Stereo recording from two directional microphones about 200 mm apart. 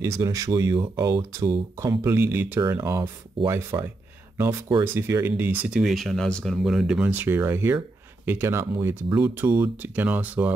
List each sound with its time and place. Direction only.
0.0 s speech: 15° right (ahead or behind)